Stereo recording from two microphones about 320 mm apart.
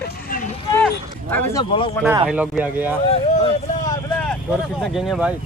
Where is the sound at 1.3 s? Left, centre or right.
Centre.